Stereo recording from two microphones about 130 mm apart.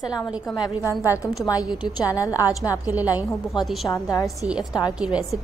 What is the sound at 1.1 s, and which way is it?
A woman's voice, 25° left (ahead or behind).